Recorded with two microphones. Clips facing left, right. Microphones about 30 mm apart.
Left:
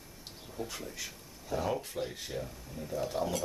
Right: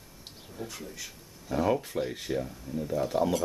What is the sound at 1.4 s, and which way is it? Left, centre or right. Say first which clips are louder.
Speech: right 6 dB; centre.